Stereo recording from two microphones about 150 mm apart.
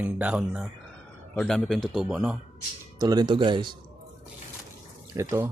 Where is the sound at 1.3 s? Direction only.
5° left (ahead or behind).